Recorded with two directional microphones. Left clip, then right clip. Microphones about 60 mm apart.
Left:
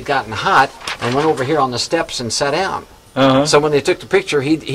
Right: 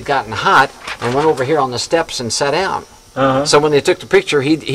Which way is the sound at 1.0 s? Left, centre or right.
Centre.